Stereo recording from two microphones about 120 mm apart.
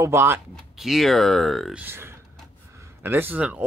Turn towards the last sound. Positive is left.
turn(degrees=-15)  # may be behind; listen again after turning